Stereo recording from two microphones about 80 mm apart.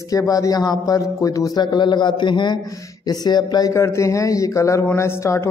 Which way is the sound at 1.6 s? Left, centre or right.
Left.